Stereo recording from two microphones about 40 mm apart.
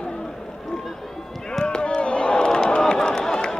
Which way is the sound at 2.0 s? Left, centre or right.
Left.